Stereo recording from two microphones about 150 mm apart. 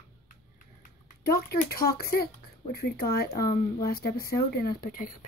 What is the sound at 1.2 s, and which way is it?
Speech, 90° left.